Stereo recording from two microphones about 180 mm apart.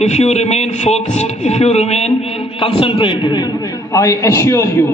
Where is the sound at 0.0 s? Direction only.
40° left (ahead or behind).